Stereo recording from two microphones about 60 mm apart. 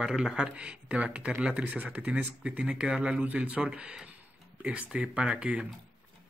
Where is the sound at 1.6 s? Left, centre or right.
Right.